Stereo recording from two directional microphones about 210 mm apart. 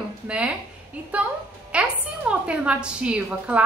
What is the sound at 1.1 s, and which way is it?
A woman's voice, 5° right (ahead or behind).